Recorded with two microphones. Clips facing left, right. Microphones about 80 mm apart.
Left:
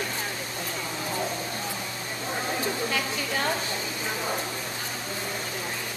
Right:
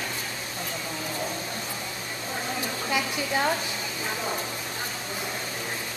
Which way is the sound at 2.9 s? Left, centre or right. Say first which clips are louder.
Right 2 dB; centre.